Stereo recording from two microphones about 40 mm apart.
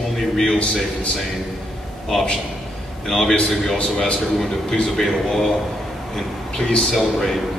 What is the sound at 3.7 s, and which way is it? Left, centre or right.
Speech, left.